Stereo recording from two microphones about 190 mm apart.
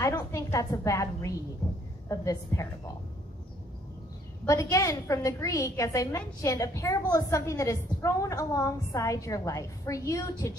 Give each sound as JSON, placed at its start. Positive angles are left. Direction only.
{"t": 0.0, "sound": "a woman's voice", "side_deg": 15}
{"t": 4.5, "sound": "a woman's voice", "side_deg": 15}